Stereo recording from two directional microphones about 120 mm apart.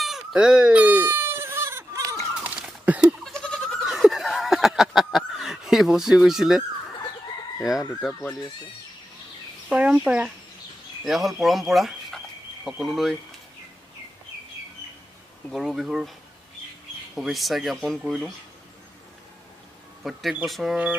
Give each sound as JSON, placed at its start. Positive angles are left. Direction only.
{"t": 0.0, "sound": "a sound", "side_deg": -5}
{"t": 2.4, "sound": "a sound", "side_deg": -10}
{"t": 3.3, "sound": "goat", "side_deg": 5}
{"t": 8.1, "sound": "speech", "side_deg": 20}
{"t": 9.7, "sound": "speech", "side_deg": -10}
{"t": 15.5, "sound": "speech", "side_deg": 0}
{"t": 17.1, "sound": "speech", "side_deg": 0}
{"t": 20.0, "sound": "speech", "side_deg": 0}